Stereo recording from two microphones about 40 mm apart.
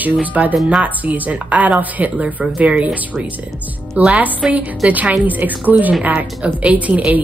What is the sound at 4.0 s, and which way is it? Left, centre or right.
Speech, right.